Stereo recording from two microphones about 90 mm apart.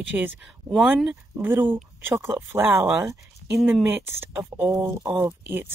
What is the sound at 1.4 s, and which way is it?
Speech, 25° right (ahead or behind).